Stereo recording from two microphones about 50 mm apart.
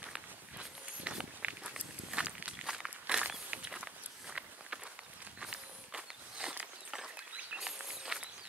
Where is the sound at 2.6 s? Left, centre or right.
Centre.